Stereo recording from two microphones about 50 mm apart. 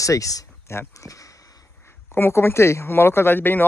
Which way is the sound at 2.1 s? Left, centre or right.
Left.